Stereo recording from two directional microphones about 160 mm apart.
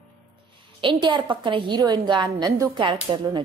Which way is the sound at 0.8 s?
30° right (ahead or behind).